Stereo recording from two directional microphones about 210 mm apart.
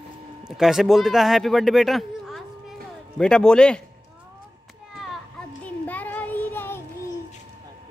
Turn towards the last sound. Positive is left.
turn(degrees=10)  # may be behind; listen again after turning